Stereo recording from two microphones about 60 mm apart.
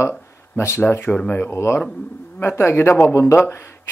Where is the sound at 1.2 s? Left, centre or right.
Left.